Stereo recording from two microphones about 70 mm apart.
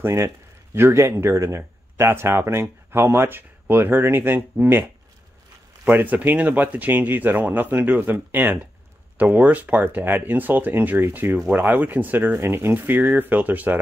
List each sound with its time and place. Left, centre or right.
0.0 s speech: right
5.9 s speech: right
12.4 s speech: right